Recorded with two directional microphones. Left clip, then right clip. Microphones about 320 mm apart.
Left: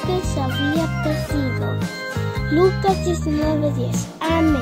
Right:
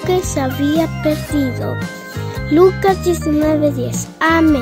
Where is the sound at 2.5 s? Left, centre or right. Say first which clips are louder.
Right 6 dB; right.